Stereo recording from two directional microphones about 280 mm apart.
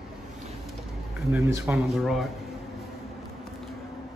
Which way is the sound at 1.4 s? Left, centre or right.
Centre.